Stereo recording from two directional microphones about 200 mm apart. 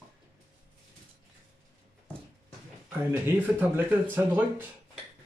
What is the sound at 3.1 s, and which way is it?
Speech, 10° right (ahead or behind).